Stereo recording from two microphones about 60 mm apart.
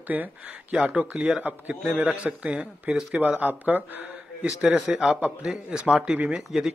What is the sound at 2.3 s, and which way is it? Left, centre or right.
Speech, centre.